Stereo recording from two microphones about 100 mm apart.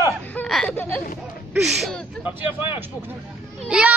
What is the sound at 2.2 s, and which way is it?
Vehicle, 20° right (ahead or behind).